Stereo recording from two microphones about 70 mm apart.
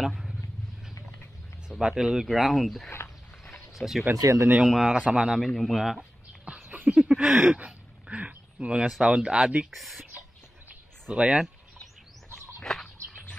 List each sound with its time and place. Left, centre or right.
0.0 s vehicle: centre
1.7 s speech: centre
3.4 s a sound: centre
4.2 s speech: right
4.6 s speech: centre
5.4 s speech: centre
6.4 s a sound: centre
7.1 s speech: centre
7.5 s a sound: centre
9.0 s speech: centre
9.7 s speech: centre
11.1 s speech: centre
12.6 s bird: centre